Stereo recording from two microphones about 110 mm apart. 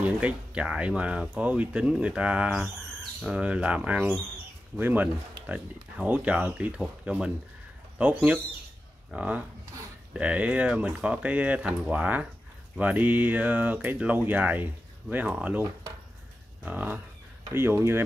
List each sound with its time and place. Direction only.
0.0 s speech: 10° right (ahead or behind)
16.6 s speech: 15° right (ahead or behind)